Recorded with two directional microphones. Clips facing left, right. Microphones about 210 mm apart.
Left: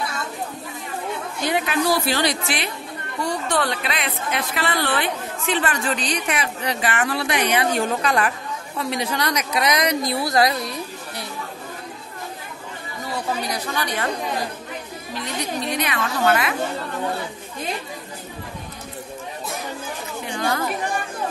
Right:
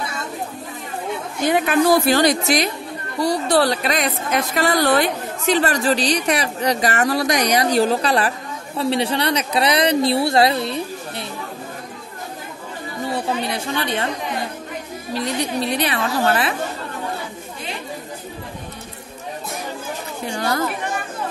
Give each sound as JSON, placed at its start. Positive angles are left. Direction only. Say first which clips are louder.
{"t": 1.5, "sound": "a woman's voice", "louder": "right 5 dB", "side_deg": -50}
{"t": 13.0, "sound": "a woman's voice", "louder": "right 3 dB", "side_deg": -25}
{"t": 15.1, "sound": "a woman's voice", "louder": "right 5 dB", "side_deg": -35}
{"t": 20.2, "sound": "speech", "louder": "right 2 dB", "side_deg": -35}